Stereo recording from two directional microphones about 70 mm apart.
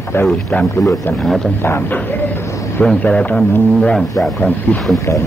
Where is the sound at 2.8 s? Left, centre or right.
Centre.